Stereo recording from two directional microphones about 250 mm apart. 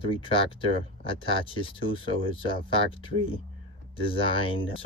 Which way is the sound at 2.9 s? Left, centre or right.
Left.